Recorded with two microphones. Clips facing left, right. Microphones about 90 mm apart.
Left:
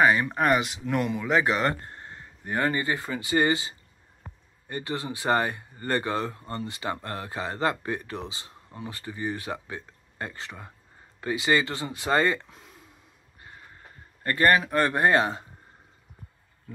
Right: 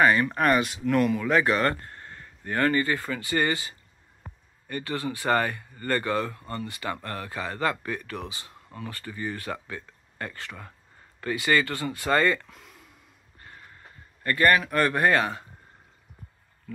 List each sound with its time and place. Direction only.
0.0 s speech: 15° left (ahead or behind)
14.2 s speech: 30° left (ahead or behind)